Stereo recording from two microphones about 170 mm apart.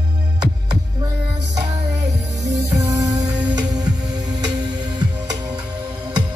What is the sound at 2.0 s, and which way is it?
Music, 80° right.